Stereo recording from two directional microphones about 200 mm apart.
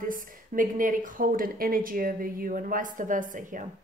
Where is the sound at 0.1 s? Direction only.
40° right (ahead or behind).